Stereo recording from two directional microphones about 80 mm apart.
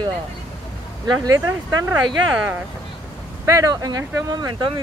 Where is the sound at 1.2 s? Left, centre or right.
Right.